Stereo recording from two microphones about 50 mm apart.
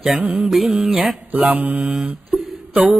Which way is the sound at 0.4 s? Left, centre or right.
Centre.